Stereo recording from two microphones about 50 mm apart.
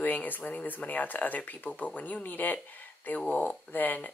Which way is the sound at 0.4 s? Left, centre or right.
Left.